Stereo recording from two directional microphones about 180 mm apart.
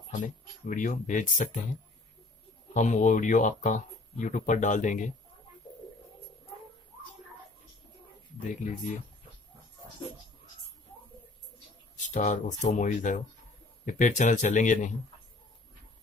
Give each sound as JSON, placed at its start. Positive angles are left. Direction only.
{"t": 0.1, "sound": "speech", "side_deg": 45}
{"t": 2.7, "sound": "speech", "side_deg": 45}
{"t": 12.0, "sound": "speech", "side_deg": 45}